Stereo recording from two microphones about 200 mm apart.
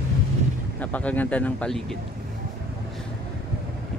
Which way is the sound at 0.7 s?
10° left (ahead or behind).